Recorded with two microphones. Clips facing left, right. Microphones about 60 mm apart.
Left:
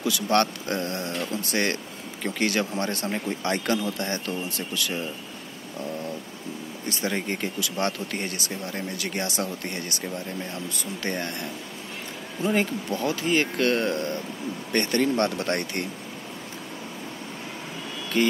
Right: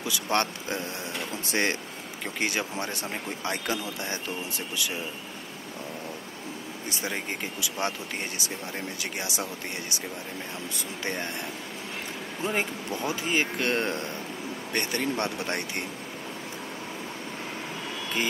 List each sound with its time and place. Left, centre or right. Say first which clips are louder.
0.0 s speech: left 4 dB; centre
6.9 s speech: left 5 dB; centre
12.4 s speech: left 5 dB; centre
13.7 s speech: left 3 dB; right
14.7 s speech: left 6 dB; centre
18.1 s speech: left 7 dB; centre